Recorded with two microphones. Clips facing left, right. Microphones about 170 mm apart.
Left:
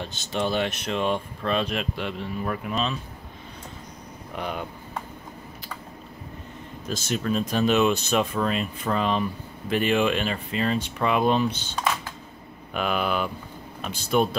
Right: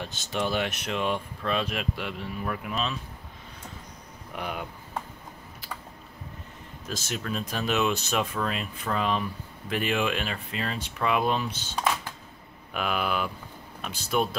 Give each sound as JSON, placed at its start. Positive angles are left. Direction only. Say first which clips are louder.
{"t": 0.0, "sound": "speech", "louder": "left 2 dB", "side_deg": -5}
{"t": 0.9, "sound": "speech", "louder": "left 3 dB", "side_deg": 30}
{"t": 1.4, "sound": "speech", "louder": "left 2 dB", "side_deg": -5}
{"t": 4.4, "sound": "speech", "louder": "left 3 dB", "side_deg": -10}
{"t": 6.9, "sound": "speech", "louder": "left 6 dB", "side_deg": 0}